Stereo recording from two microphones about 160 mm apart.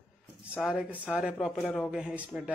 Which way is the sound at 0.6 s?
5° right (ahead or behind).